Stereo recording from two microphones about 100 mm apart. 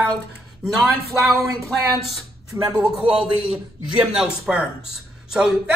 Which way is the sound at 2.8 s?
10° right (ahead or behind).